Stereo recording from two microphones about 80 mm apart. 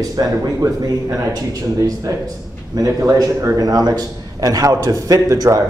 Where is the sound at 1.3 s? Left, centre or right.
Right.